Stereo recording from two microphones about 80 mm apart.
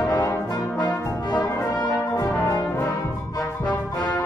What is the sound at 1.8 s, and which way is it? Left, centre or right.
Brass instrument, left.